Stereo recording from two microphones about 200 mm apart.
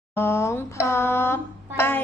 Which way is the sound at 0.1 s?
15° left (ahead or behind).